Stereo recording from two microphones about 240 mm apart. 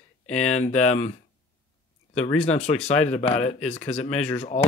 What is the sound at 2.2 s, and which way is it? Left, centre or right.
Speech, left.